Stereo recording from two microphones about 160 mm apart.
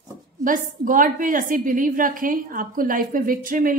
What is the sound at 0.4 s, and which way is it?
A woman's voice, 55° right (ahead or behind).